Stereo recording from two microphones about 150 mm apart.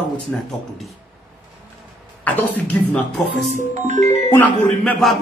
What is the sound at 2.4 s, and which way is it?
Speech, 10° left (ahead or behind).